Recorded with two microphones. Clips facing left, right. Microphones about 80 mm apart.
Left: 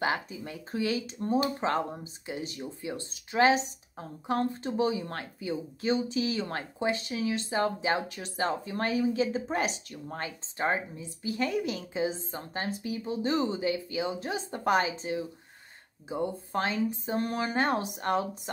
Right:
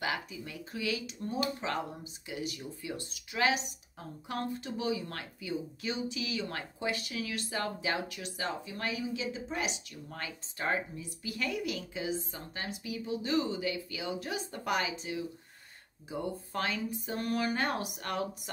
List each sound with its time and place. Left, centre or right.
0.0 s speech: left